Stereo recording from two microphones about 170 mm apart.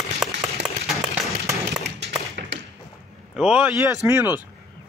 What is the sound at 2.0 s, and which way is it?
Tap, 90° right.